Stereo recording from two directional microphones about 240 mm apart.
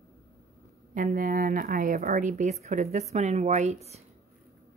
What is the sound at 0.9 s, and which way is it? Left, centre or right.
Speech, right.